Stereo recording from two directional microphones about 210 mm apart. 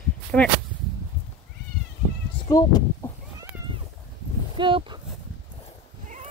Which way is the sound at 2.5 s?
15° left (ahead or behind).